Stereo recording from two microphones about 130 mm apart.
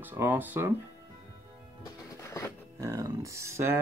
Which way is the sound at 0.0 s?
15° right (ahead or behind).